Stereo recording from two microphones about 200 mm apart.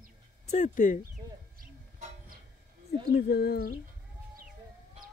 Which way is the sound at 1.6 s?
45° right (ahead or behind).